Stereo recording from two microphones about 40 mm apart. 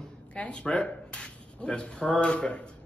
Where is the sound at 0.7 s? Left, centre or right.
Left.